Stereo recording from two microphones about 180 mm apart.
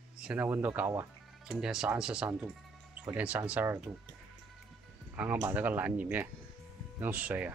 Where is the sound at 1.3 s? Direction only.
Centre (ahead or behind).